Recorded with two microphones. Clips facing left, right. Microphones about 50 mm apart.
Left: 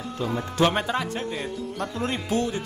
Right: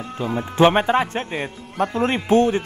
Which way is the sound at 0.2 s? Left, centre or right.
Right.